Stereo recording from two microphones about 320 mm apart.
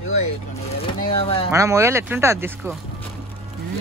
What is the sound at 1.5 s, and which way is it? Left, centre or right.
Speech, centre.